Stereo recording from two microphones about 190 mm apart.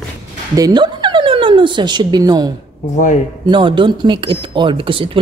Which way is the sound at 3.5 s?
25° right (ahead or behind).